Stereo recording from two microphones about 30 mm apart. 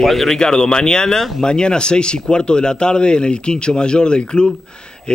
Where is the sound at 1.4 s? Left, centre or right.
Left.